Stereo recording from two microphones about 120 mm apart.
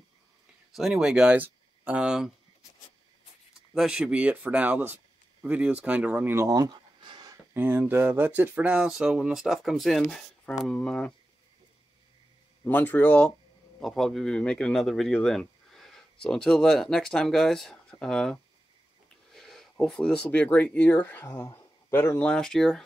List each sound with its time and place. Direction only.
0.7 s speech: centre (ahead or behind)
3.7 s speech: 5° right (ahead or behind); by 6.7 s 25° right (ahead or behind)
7.1 s a sound: 35° right (ahead or behind)
7.5 s speech: 15° right (ahead or behind); by 11.1 s 5° left (ahead or behind)
12.6 s a man's voice: 15° left (ahead or behind)
22.3 s speech: 5° left (ahead or behind)